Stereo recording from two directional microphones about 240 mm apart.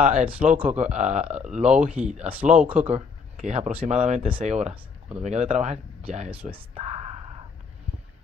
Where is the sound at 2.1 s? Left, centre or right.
Right.